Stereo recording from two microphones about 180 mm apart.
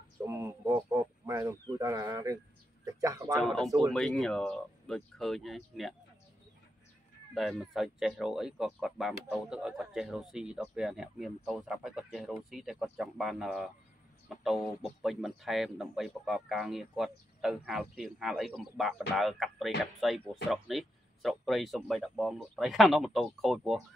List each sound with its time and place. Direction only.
0.2 s speech: 15° right (ahead or behind)
3.3 s speech: centre (ahead or behind)
7.3 s speech: centre (ahead or behind)